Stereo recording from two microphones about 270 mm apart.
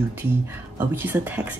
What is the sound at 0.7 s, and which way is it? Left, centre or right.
Speech, centre.